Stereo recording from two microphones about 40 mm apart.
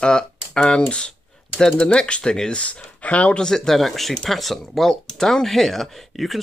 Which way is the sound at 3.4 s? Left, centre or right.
Centre.